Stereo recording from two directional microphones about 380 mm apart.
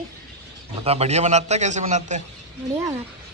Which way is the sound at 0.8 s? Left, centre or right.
Centre.